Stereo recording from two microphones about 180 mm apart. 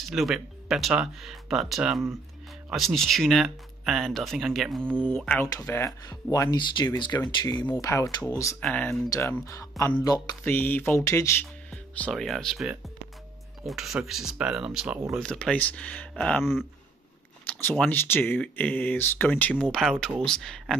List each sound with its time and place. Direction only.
0.1 s speech: centre (ahead or behind); by 8.3 s 20° left (ahead or behind)
8.5 s speech: 5° left (ahead or behind)
9.1 s speech: 15° left (ahead or behind)
11.7 s speech: 5° left (ahead or behind)